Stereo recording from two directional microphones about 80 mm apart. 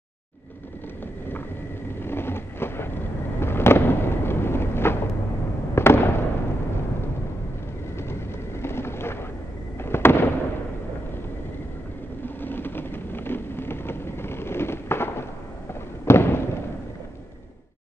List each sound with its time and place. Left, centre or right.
2.0 s vehicle: left
5.8 s fireworks: left
8.0 s clip-clop: left
9.8 s fireworks: left
12.4 s vehicle: left
16.1 s fireworks: left